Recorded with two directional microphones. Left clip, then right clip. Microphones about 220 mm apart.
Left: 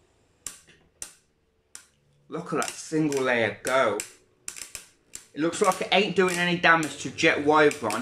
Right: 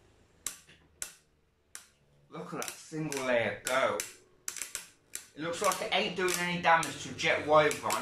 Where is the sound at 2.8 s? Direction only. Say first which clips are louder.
Left 8 dB; 45° left (ahead or behind).